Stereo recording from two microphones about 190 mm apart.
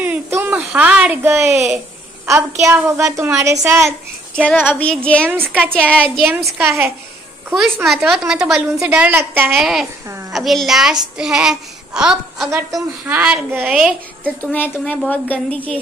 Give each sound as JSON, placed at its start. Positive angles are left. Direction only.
{"t": 0.0, "sound": "a woman's voice", "side_deg": -10}
{"t": 4.5, "sound": "a woman's voice", "side_deg": 5}
{"t": 5.3, "sound": "a woman's voice", "side_deg": -10}
{"t": 7.8, "sound": "a woman's voice", "side_deg": 0}
{"t": 14.2, "sound": "a woman's voice", "side_deg": 5}